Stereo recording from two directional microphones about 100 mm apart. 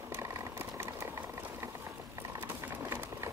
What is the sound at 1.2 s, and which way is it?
Boiling, 15° right (ahead or behind).